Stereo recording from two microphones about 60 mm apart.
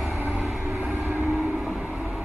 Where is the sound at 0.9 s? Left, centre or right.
Right.